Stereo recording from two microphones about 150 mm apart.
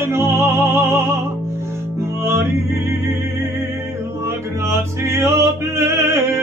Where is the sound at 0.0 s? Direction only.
15° right (ahead or behind).